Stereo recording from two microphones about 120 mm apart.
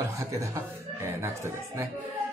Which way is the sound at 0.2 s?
25° right (ahead or behind).